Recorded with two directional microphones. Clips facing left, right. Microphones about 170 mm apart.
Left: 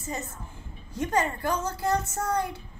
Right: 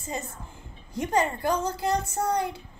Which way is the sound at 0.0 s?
15° right (ahead or behind).